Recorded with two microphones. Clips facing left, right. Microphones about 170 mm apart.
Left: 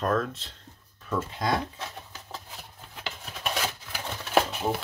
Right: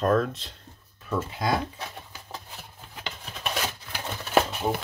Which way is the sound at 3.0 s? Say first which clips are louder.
Even; centre (ahead or behind).